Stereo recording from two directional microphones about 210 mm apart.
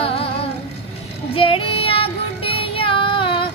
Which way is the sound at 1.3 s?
25° left (ahead or behind).